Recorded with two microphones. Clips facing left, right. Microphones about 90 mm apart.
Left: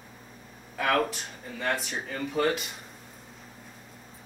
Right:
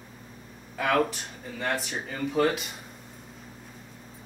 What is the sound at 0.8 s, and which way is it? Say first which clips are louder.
Speech: right 1 dB; centre (ahead or behind).